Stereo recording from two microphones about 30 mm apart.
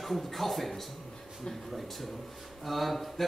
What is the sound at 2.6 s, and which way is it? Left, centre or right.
Speech, centre.